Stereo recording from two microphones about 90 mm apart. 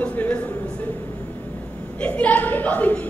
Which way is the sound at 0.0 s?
15° left (ahead or behind).